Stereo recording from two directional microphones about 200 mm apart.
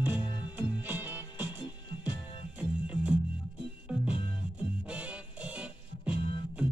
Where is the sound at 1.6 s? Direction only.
20° left (ahead or behind).